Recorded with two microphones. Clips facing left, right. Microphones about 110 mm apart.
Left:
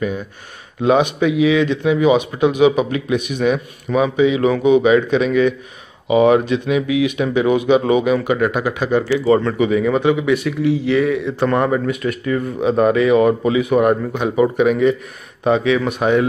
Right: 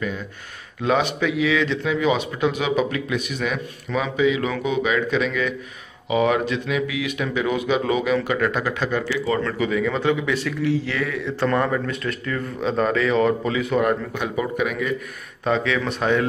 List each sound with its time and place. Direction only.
0.8 s speech: 20° left (ahead or behind)
9.1 s a man's voice: 30° left (ahead or behind)